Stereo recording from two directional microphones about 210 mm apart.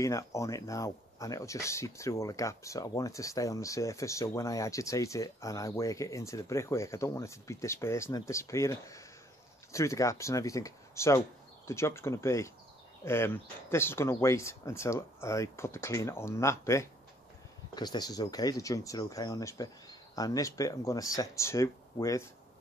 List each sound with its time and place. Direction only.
0.0 s speech: 15° left (ahead or behind)